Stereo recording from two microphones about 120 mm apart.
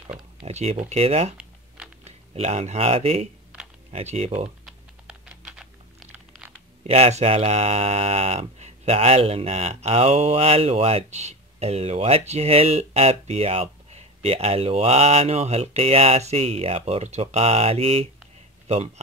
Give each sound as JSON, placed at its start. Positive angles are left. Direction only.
{"t": 0.5, "sound": "speech", "side_deg": -65}
{"t": 4.6, "sound": "typing", "side_deg": -10}
{"t": 6.8, "sound": "speech", "side_deg": -65}